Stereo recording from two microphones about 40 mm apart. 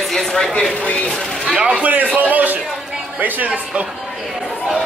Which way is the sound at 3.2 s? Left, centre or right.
Right.